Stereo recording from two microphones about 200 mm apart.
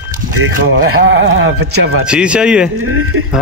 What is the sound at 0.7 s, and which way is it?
Speech, 75° right (ahead or behind).